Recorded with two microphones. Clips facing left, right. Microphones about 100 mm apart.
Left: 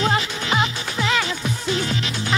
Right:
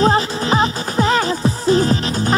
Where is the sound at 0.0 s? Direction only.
35° right (ahead or behind).